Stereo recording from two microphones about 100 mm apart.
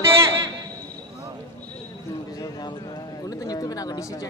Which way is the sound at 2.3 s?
40° left (ahead or behind).